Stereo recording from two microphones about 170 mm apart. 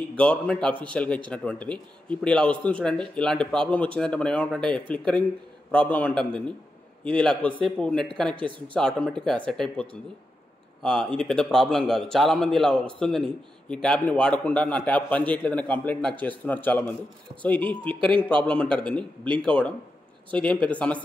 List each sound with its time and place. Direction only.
0.1 s a man's voice: 5° left (ahead or behind)
8.4 s speech: 30° right (ahead or behind)
8.7 s a man's voice: 5° left (ahead or behind)